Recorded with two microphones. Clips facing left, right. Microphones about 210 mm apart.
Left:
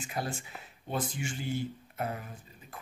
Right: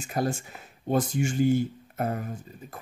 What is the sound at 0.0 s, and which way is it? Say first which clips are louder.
Speech: right 8 dB; 45° right (ahead or behind).